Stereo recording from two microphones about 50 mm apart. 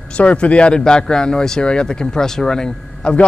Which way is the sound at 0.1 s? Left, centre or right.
Left.